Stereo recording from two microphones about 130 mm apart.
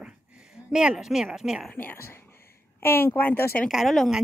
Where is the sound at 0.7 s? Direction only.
5° right (ahead or behind).